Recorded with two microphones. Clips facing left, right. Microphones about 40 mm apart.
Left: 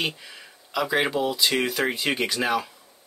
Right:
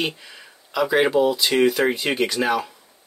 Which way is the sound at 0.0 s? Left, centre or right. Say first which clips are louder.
Right 2 dB; centre.